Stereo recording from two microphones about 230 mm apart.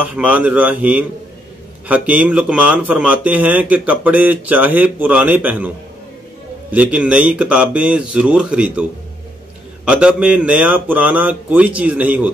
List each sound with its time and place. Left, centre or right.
0.0 s speech: centre
6.7 s speech: centre
9.8 s speech: centre